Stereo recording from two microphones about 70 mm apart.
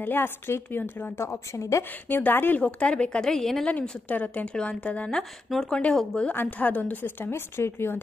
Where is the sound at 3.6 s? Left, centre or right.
Centre.